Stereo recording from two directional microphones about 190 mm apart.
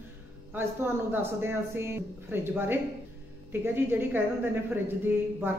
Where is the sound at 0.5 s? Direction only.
10° right (ahead or behind).